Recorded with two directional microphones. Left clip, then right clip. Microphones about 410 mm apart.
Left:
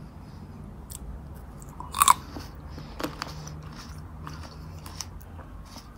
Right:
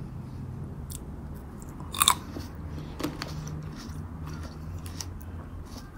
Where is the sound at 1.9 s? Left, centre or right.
Centre.